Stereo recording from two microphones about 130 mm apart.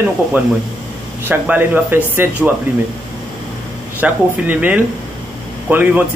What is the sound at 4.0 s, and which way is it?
A man's voice, 15° right (ahead or behind).